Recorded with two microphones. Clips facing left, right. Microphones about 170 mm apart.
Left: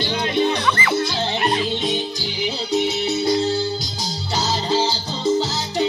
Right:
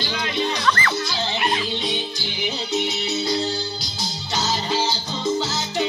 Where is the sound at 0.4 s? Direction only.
10° left (ahead or behind).